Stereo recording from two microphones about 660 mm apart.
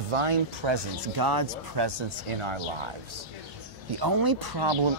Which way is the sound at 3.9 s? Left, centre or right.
Right.